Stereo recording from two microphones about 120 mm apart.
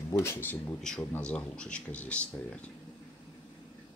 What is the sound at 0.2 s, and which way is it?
Speech, 20° left (ahead or behind).